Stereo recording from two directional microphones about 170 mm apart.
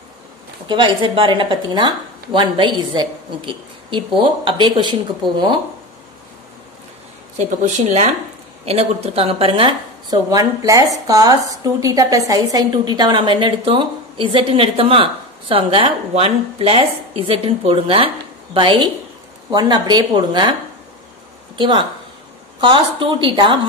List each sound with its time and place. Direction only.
0.7 s a woman's voice: 30° right (ahead or behind)
7.3 s a woman's voice: 45° right (ahead or behind); by 20.5 s 25° right (ahead or behind)
21.5 s a woman's voice: 30° right (ahead or behind)